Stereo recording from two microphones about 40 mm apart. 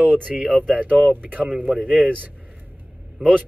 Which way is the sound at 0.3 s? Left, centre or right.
Right.